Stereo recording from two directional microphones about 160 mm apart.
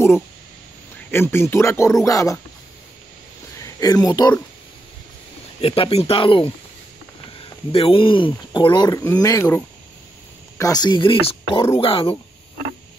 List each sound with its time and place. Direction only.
1.1 s speech: 15° left (ahead or behind)
3.5 s speech: 20° left (ahead or behind)
5.6 s speech: 35° left (ahead or behind); by 9.6 s 15° left (ahead or behind)
10.6 s speech: 25° left (ahead or behind)